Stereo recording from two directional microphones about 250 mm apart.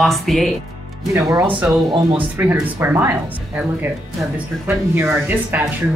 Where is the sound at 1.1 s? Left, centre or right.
Centre.